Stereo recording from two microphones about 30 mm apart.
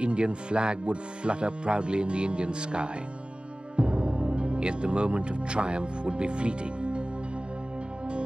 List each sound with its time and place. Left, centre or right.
0.0 s speech: right